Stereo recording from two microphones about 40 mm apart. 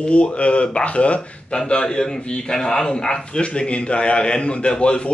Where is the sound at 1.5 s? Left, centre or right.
Centre.